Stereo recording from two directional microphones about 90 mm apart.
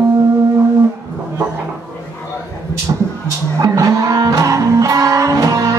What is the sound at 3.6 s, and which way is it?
Music, 40° right (ahead or behind).